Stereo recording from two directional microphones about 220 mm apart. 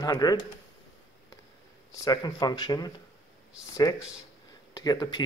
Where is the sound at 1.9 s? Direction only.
15° left (ahead or behind).